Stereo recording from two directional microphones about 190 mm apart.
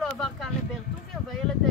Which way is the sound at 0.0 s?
Centre (ahead or behind).